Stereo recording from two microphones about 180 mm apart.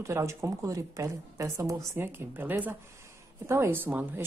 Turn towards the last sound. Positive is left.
turn(degrees=-10)  # may be behind; listen again after turning